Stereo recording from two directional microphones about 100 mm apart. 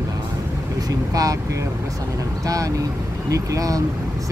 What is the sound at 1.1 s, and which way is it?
Speech, 35° right (ahead or behind).